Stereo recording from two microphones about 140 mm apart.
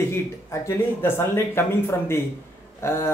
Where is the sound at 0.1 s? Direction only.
20° left (ahead or behind).